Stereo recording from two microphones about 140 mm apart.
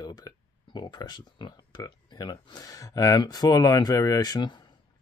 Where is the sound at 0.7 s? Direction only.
30° left (ahead or behind).